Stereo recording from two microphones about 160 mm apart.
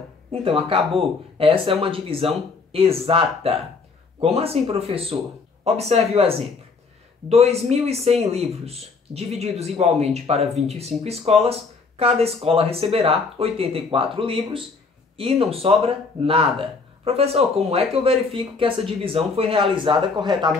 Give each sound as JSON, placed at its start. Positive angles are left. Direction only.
{"t": 0.3, "sound": "speech", "side_deg": -35}